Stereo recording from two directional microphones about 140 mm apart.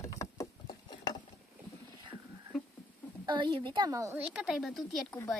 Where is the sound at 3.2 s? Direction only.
35° right (ahead or behind).